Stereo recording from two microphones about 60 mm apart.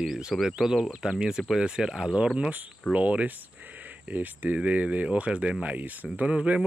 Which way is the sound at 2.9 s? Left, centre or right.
Right.